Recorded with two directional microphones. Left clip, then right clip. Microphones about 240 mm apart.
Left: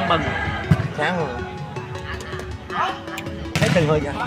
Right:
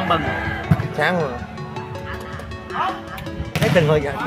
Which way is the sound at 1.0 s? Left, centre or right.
Right.